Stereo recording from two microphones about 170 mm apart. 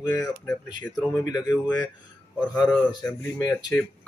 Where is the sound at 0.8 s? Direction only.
10° left (ahead or behind).